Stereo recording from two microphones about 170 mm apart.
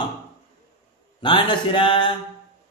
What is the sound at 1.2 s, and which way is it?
Speech, 30° left (ahead or behind).